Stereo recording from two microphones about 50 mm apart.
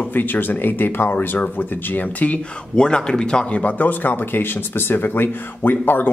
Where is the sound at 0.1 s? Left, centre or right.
Left.